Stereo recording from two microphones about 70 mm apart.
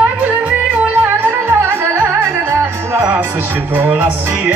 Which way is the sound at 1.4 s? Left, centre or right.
Right.